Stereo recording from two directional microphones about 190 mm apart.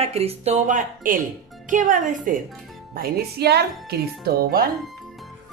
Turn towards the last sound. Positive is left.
turn(degrees=-55)  # may be behind; listen again after turning